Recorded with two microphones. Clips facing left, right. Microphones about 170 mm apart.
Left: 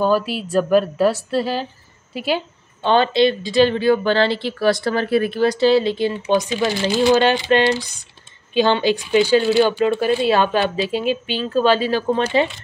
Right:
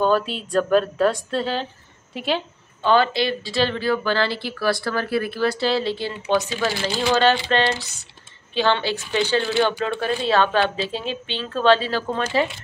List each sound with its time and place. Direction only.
0.0 s speech: 5° left (ahead or behind)
2.8 s speech: 25° left (ahead or behind)